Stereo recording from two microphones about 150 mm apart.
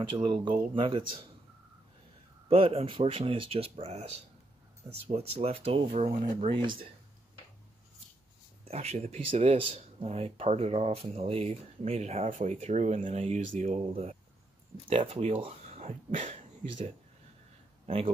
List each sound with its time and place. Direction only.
0.2 s speech: 30° right (ahead or behind)
2.4 s speech: 40° right (ahead or behind)
6.6 s speech: 30° right (ahead or behind)
8.6 s speech: 45° right (ahead or behind)